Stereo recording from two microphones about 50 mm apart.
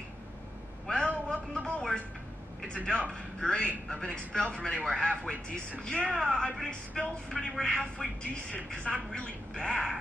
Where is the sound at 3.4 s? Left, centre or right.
Centre.